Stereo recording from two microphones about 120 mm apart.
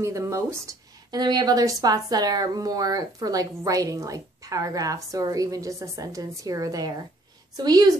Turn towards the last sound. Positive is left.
turn(degrees=-35)  # may be behind; listen again after turning